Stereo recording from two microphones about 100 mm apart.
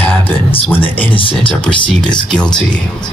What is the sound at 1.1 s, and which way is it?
Speech, 60° left (ahead or behind).